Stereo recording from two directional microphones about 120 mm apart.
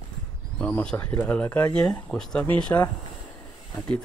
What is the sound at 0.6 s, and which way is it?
Speech, 10° left (ahead or behind).